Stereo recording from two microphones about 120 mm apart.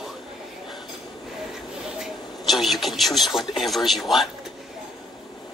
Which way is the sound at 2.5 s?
Centre (ahead or behind).